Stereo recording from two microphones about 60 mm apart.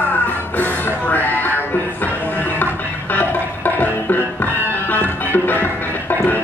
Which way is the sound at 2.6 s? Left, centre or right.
Left.